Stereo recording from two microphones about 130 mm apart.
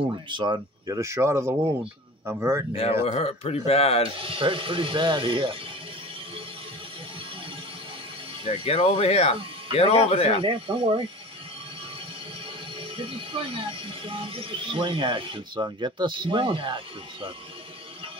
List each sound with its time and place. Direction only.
0.3 s speech: 35° right (ahead or behind); by 2.6 s 20° right (ahead or behind)
2.7 s speech: 50° left (ahead or behind)
4.2 s speech: 45° right (ahead or behind)
8.5 s speech: 60° left (ahead or behind)
10.4 s speech: 45° right (ahead or behind)
12.4 s speech: 45° right (ahead or behind)